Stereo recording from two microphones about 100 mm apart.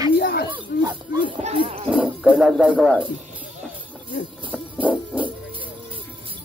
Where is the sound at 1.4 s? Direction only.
70° right (ahead or behind).